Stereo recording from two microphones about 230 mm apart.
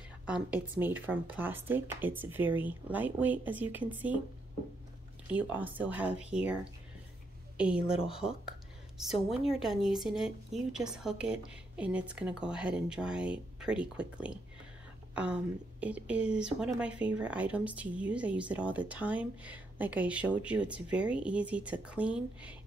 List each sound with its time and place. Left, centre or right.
0.3 s speech: centre
5.3 s speech: centre
7.5 s speech: centre
7.8 s speech: left
9.5 s speech: centre
15.8 s speech: centre